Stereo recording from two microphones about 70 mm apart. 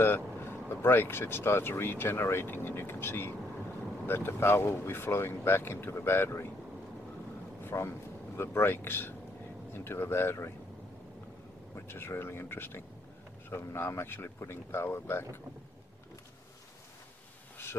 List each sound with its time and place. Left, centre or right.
0.0 s speech: left
7.6 s speech: left
11.7 s speech: left